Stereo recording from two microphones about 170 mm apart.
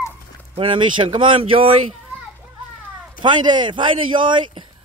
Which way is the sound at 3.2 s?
25° right (ahead or behind).